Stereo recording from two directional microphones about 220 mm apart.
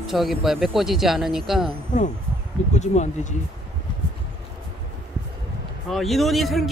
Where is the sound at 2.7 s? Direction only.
30° left (ahead or behind).